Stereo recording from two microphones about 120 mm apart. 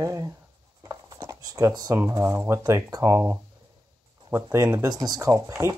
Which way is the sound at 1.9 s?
20° right (ahead or behind).